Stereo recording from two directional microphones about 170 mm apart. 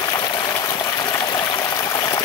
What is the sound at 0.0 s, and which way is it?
Water, 25° left (ahead or behind).